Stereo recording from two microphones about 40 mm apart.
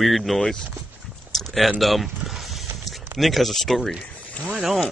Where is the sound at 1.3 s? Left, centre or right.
Centre.